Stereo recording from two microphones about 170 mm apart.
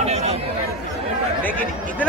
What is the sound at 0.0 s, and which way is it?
Chatter, 40° right (ahead or behind).